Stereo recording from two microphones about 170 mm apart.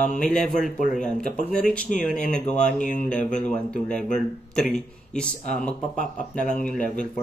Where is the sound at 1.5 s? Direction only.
5° left (ahead or behind).